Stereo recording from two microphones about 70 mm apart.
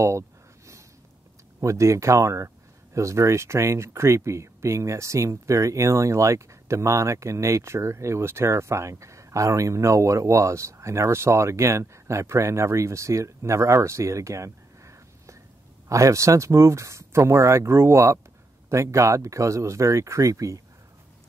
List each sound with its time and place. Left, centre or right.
1.6 s speech: right